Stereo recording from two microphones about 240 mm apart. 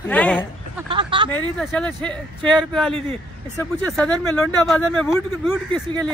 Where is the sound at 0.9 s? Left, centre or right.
Right.